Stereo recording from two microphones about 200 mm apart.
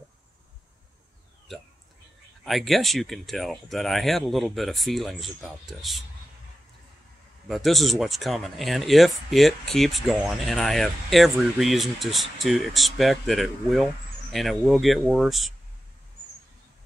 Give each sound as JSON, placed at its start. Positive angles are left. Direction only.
{"t": 2.4, "sound": "speech", "side_deg": 0}
{"t": 7.4, "sound": "speech", "side_deg": 0}